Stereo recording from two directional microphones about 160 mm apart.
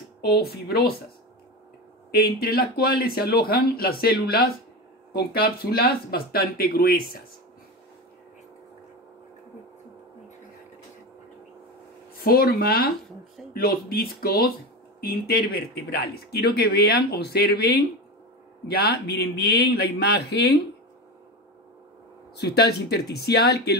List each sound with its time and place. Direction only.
0.2 s speech: 75° left (ahead or behind)
2.0 s speech: 70° left (ahead or behind)
12.2 s speech: 70° left (ahead or behind)
18.7 s speech: 85° left
22.4 s speech: 90° left